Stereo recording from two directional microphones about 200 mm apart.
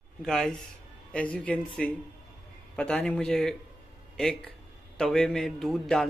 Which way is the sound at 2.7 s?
5° left (ahead or behind).